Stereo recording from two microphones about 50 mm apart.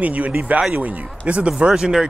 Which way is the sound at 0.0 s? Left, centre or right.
Right.